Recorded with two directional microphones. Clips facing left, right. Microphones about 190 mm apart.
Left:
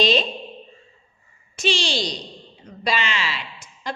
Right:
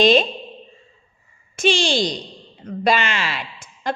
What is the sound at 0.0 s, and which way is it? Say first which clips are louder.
Speech: right 5 dB; 50° right (ahead or behind).